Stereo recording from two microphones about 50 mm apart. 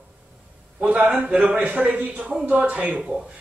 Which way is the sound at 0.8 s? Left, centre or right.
Right.